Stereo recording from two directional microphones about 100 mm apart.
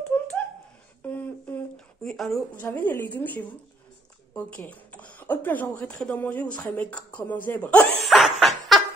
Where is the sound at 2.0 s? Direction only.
5° left (ahead or behind).